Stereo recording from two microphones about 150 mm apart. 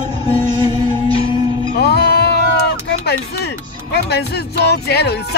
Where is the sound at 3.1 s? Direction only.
90° left.